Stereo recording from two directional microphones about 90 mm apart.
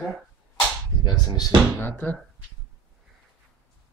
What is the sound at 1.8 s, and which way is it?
Speech, 20° left (ahead or behind).